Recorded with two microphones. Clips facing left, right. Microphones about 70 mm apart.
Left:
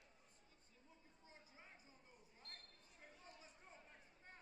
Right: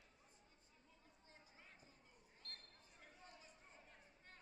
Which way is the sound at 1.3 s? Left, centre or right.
Centre.